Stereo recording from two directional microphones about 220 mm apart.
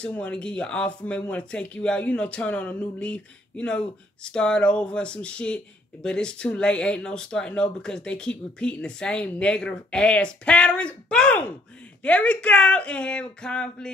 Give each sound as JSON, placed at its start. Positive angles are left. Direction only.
{"t": 0.0, "sound": "speech", "side_deg": 5}